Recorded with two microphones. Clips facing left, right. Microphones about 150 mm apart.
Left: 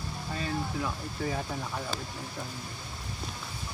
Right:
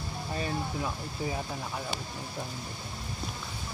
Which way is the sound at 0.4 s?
20° right (ahead or behind).